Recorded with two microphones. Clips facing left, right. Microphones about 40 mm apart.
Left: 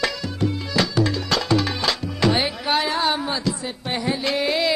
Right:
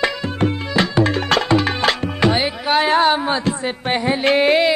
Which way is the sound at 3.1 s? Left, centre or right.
Right.